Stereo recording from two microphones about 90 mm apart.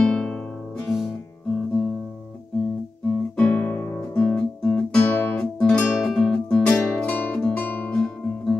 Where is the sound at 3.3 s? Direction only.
20° left (ahead or behind).